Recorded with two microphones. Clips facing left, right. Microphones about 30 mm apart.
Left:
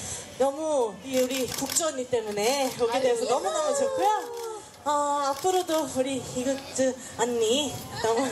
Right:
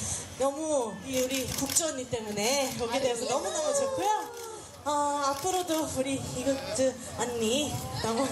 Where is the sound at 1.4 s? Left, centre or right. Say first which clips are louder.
Left 2 dB; left.